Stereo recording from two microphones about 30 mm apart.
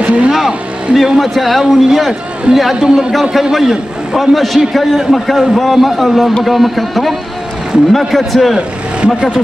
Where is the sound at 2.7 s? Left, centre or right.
Right.